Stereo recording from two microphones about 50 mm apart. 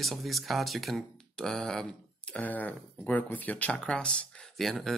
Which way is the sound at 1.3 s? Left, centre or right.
Centre.